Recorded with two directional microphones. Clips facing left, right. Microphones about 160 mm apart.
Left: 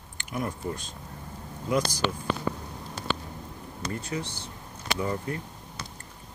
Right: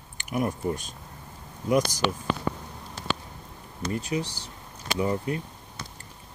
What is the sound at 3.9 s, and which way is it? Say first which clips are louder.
Speech: right 5 dB; 15° right (ahead or behind).